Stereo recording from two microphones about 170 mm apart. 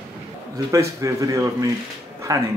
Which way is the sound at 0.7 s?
20° right (ahead or behind).